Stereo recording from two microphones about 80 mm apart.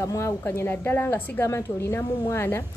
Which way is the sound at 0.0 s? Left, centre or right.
Left.